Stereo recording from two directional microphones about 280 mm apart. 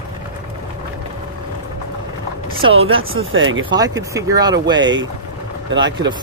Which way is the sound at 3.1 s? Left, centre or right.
Right.